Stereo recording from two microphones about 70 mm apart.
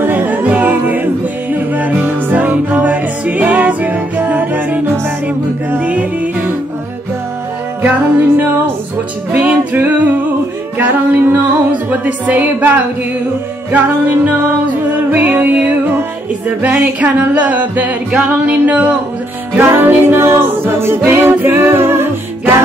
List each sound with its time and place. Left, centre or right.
0.0 s music: right
7.8 s music: right
14.2 s music: right